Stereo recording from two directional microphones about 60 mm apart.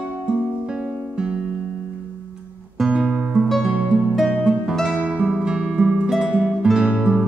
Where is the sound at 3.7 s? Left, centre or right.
Right.